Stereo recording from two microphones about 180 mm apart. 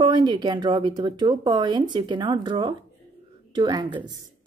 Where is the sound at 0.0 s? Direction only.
25° right (ahead or behind).